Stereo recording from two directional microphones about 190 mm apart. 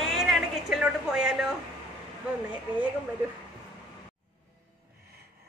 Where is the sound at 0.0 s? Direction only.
Centre (ahead or behind).